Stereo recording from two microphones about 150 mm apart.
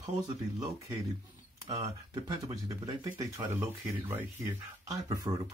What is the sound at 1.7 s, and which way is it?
Speech, 30° right (ahead or behind).